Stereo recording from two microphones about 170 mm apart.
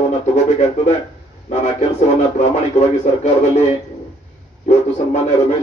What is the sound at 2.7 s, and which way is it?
Speech, 45° left (ahead or behind).